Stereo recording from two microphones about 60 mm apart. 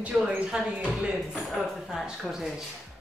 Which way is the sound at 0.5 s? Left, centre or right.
Centre.